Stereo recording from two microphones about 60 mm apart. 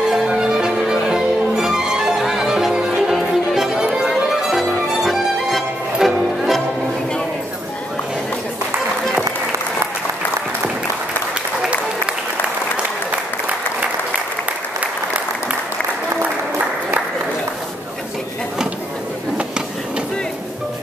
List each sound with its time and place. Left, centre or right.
0.1 s music: centre
14.8 s applause: centre
16.2 s applause: right